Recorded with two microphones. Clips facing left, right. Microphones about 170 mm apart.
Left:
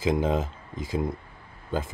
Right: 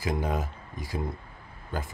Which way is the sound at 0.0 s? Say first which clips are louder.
Left 5 dB; 20° left (ahead or behind).